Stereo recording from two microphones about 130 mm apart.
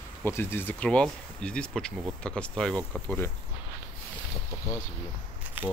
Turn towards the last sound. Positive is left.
turn(degrees=-15)  # may be behind; listen again after turning